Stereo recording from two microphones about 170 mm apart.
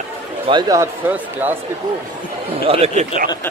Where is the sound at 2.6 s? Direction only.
35° right (ahead or behind).